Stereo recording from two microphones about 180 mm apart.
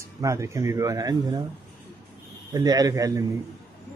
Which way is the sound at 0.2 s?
15° right (ahead or behind).